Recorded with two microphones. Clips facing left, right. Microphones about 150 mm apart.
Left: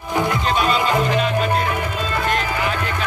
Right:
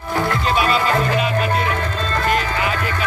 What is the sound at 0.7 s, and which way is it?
Music, 15° left (ahead or behind).